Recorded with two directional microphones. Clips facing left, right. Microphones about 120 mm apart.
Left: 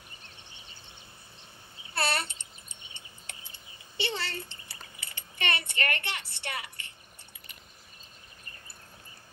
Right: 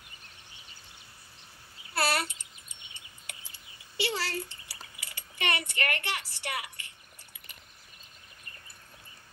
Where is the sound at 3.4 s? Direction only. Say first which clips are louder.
Left 2 dB; 20° left (ahead or behind).